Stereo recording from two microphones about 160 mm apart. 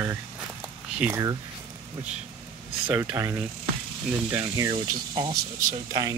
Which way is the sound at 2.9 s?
15° right (ahead or behind).